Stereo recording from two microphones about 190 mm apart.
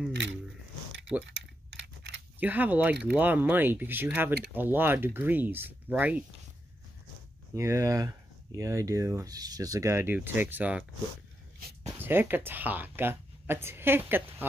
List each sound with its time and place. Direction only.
1.2 s keys jangling: 70° right (ahead or behind)
2.4 s speech: 10° right (ahead or behind)
7.5 s speech: 15° right (ahead or behind)
12.0 s speech: 10° right (ahead or behind)